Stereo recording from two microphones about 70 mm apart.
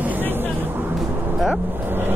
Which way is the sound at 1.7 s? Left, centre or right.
Right.